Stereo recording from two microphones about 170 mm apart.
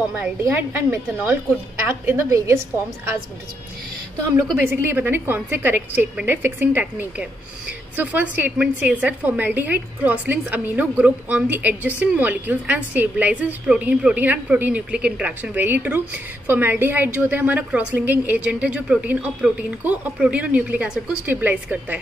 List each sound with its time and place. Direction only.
0.2 s a woman's voice: 10° right (ahead or behind)
4.6 s a woman's voice: 10° right (ahead or behind)